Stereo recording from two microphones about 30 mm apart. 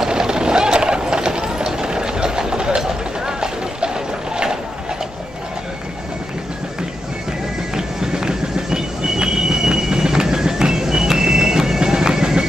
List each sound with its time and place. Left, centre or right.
0.0 s bird: right
1.7 s train: right
2.8 s a sound: right
7.7 s train: centre